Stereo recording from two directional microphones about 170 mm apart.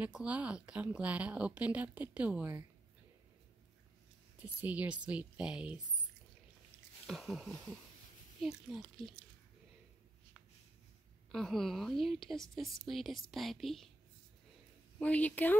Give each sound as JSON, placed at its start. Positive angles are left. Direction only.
{"t": 0.0, "sound": "speech", "side_deg": -10}
{"t": 4.4, "sound": "speech", "side_deg": -10}
{"t": 7.1, "sound": "a woman's voice", "side_deg": 0}
{"t": 11.3, "sound": "a woman's voice", "side_deg": 0}
{"t": 15.0, "sound": "speech", "side_deg": 10}